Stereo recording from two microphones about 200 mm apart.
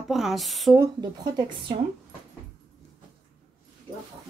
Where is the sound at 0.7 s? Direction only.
15° right (ahead or behind).